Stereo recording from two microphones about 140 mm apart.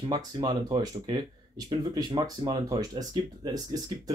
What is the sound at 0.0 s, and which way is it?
Speech, 30° right (ahead or behind).